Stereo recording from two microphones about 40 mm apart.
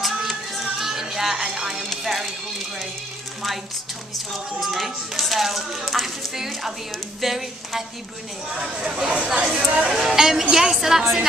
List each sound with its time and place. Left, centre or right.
0.6 s music: centre
1.8 s music: centre
4.6 s speech: centre
8.5 s speech: centre
9.6 s speech: centre